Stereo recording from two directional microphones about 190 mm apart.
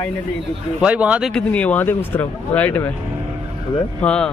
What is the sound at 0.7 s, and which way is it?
Speech, 5° right (ahead or behind).